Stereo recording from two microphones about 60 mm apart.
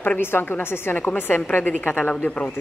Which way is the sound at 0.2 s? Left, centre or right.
Left.